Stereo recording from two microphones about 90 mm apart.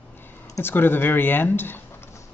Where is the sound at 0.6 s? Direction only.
25° left (ahead or behind).